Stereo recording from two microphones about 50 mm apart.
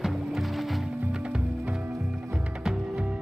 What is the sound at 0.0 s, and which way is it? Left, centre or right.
Music, centre.